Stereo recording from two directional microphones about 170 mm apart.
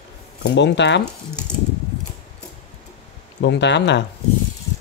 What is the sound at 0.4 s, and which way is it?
Speech, 85° left.